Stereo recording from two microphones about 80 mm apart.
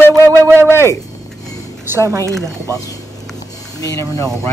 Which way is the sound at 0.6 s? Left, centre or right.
Left.